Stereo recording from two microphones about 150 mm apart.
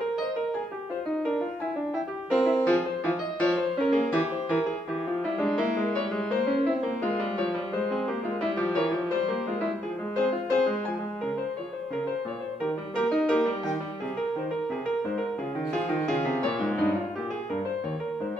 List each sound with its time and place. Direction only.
2.3 s music: 5° left (ahead or behind)
5.4 s music: 5° left (ahead or behind)
10.1 s music: 5° left (ahead or behind)
12.6 s music: 5° left (ahead or behind)
15.7 s music: 5° left (ahead or behind)